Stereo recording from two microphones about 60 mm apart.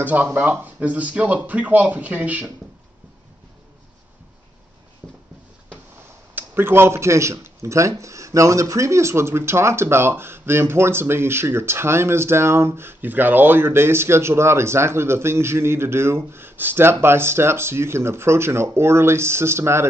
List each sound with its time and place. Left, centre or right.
0.0 s speech: right
5.0 s a sound: right
6.3 s speech: right